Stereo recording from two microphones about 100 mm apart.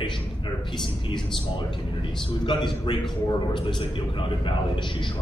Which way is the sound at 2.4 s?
50° left (ahead or behind).